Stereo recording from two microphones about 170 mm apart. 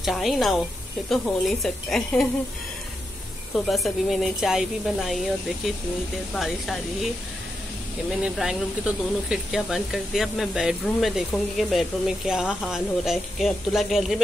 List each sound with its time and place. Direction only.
0.0 s speech: centre (ahead or behind)
3.5 s speech: centre (ahead or behind)
6.3 s speech: centre (ahead or behind)
8.1 s speech: centre (ahead or behind)